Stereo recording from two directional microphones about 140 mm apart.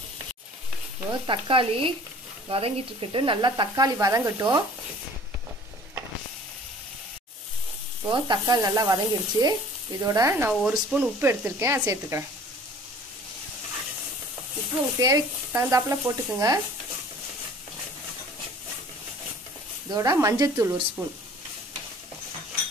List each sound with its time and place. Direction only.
1.2 s speech: 40° right (ahead or behind)
8.1 s sizzle: 30° right (ahead or behind)
10.6 s frying: 5° right (ahead or behind)
15.0 s sizzle: 25° right (ahead or behind)
19.9 s sizzle: 25° right (ahead or behind)